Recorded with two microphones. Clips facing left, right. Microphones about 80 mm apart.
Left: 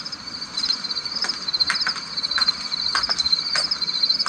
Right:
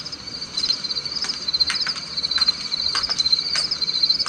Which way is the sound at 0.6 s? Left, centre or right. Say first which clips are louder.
Even; left.